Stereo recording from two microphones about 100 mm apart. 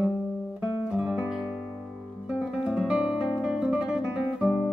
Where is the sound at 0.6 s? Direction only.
10° right (ahead or behind).